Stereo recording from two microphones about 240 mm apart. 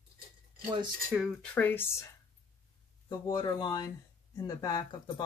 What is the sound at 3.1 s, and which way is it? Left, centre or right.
Speech, centre.